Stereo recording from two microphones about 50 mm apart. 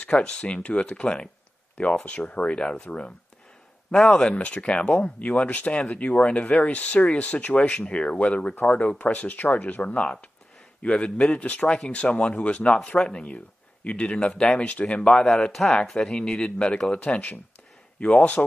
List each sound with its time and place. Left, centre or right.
0.0 s speech: centre
3.9 s speech: centre
4.4 s speech: left
6.0 s speech: left
12.7 s speech: centre